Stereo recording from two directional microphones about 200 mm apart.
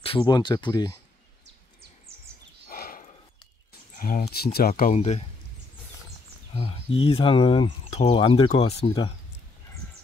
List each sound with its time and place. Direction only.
0.0 s speech: 25° left (ahead or behind)
2.7 s horse: 45° left (ahead or behind)
4.0 s speech: 50° left (ahead or behind)
4.9 s speech: 35° left (ahead or behind)
6.5 s speech: 30° left (ahead or behind)